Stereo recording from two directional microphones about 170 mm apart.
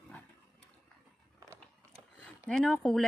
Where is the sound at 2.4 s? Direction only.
Centre (ahead or behind).